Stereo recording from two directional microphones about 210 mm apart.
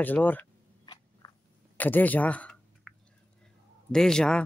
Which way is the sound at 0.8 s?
20° left (ahead or behind).